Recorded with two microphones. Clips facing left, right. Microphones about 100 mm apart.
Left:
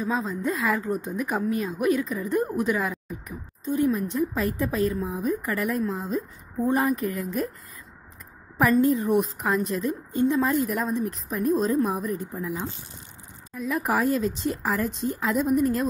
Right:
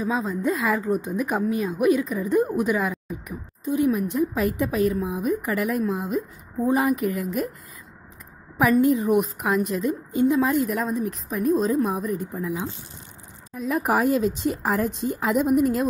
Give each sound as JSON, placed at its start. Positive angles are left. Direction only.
{"t": 0.0, "sound": "a woman's voice", "side_deg": -5}
{"t": 1.1, "sound": "a woman's voice", "side_deg": -15}
{"t": 2.9, "sound": "speech", "side_deg": 0}
{"t": 3.6, "sound": "a woman's voice", "side_deg": -10}
{"t": 8.5, "sound": "a woman's voice", "side_deg": -10}
{"t": 13.7, "sound": "speech", "side_deg": -45}
{"t": 15.3, "sound": "a woman's voice", "side_deg": -5}